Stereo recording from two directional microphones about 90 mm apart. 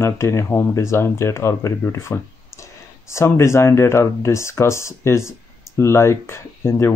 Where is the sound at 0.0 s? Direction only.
35° left (ahead or behind).